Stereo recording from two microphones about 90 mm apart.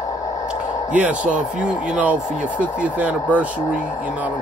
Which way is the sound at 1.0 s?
10° right (ahead or behind).